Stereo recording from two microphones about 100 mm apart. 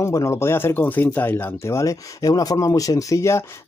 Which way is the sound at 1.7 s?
35° left (ahead or behind).